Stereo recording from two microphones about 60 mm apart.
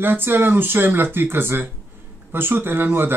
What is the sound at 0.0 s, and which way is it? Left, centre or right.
Speech, right.